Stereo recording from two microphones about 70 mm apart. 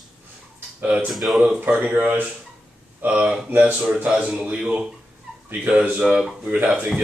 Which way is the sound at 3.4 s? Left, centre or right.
Right.